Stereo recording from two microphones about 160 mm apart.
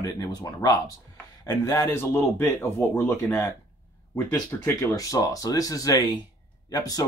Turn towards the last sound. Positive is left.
turn(degrees=25)  # may be behind; listen again after turning